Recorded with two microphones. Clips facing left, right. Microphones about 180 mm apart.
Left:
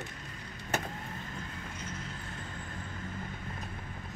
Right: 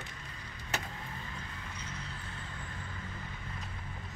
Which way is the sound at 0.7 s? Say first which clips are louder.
Left 4 dB; 50° left (ahead or behind).